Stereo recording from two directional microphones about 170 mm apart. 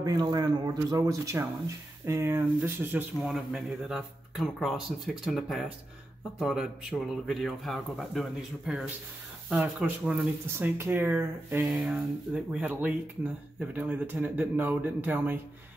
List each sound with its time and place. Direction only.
0.0 s speech: 25° right (ahead or behind)
3.2 s speech: centre (ahead or behind)